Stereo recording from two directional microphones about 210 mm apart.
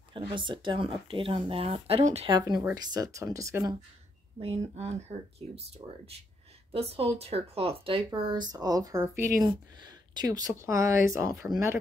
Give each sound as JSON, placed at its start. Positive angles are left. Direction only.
{"t": 0.1, "sound": "speech", "side_deg": -25}
{"t": 4.4, "sound": "speech", "side_deg": -30}